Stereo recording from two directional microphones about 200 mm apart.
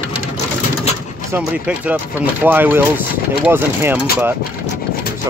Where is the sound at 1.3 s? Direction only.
10° right (ahead or behind).